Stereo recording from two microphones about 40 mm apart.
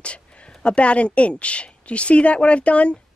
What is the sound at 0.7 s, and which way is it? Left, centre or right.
A woman's voice, left.